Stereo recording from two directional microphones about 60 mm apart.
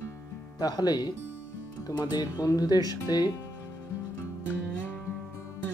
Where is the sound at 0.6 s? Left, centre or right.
Left.